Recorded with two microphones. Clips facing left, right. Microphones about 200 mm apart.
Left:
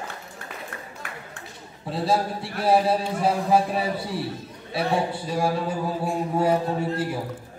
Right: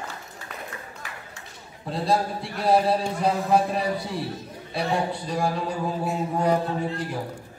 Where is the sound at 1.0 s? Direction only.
55° left (ahead or behind).